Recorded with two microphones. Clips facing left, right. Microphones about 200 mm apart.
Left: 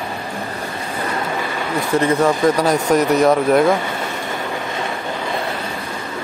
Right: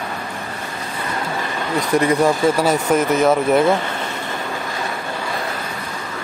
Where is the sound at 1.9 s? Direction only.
15° right (ahead or behind).